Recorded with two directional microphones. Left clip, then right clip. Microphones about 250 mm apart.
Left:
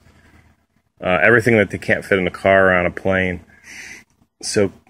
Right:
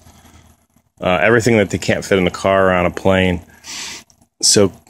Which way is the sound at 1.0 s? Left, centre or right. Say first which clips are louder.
Even; centre.